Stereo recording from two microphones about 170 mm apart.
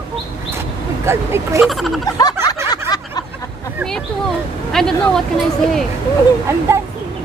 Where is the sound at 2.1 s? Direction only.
20° left (ahead or behind).